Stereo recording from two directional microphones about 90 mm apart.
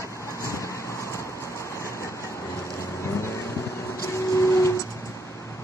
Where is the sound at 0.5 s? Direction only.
35° left (ahead or behind).